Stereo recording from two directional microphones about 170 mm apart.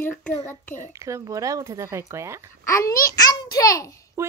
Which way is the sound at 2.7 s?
20° left (ahead or behind).